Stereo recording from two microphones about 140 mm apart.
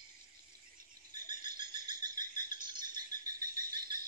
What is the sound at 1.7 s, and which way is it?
Insect, 30° right (ahead or behind).